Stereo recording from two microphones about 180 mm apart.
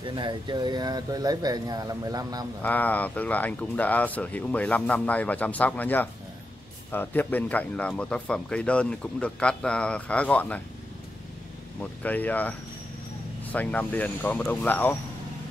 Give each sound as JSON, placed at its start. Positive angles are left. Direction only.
{"t": 0.0, "sound": "speech", "side_deg": -25}
{"t": 2.6, "sound": "speech", "side_deg": 10}
{"t": 11.8, "sound": "speech", "side_deg": 10}